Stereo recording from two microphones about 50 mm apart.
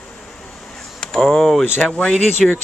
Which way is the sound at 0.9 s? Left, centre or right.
Centre.